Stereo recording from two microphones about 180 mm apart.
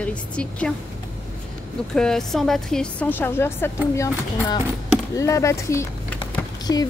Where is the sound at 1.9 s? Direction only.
5° left (ahead or behind).